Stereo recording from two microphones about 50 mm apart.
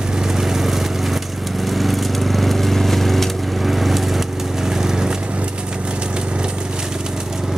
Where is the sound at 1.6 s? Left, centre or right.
Centre.